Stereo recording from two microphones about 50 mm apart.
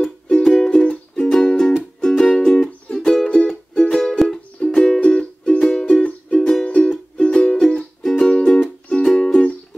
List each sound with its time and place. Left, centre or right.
0.0 s music: centre
7.6 s music: centre
8.2 s music: centre